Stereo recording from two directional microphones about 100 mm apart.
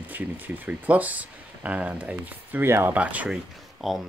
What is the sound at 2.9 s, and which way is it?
Speech, 15° right (ahead or behind).